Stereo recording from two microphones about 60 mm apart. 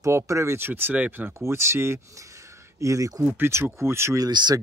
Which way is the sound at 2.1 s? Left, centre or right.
Right.